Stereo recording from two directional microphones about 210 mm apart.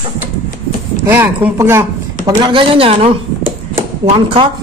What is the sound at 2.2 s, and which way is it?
Speech, 20° right (ahead or behind).